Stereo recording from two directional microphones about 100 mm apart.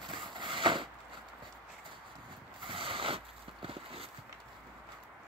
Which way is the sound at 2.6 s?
60° right (ahead or behind).